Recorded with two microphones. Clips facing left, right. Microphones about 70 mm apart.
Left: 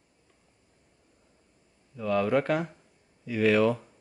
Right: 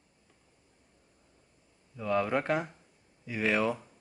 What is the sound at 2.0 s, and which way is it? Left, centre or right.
Speech, centre.